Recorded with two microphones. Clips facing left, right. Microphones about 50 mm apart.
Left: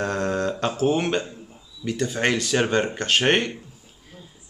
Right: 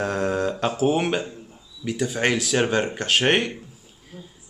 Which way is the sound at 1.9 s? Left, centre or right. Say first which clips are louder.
Even; centre.